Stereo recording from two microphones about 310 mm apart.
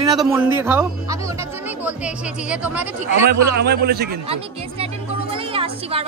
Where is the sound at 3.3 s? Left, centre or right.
Right.